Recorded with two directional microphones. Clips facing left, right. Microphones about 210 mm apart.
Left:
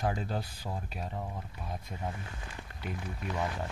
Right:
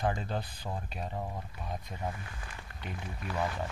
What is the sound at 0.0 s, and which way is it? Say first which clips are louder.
Speech: even; 5° left (ahead or behind).